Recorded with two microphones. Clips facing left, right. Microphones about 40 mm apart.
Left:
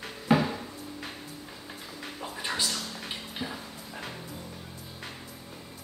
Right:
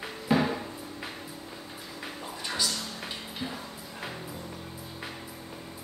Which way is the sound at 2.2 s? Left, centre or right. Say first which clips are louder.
Left 1 dB; centre.